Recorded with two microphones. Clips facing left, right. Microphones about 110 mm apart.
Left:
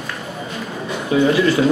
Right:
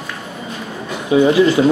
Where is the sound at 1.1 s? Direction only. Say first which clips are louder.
Right 4 dB; 25° right (ahead or behind).